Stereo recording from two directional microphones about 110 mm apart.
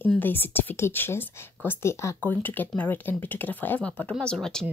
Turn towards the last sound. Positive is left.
turn(degrees=5)  # may be behind; listen again after turning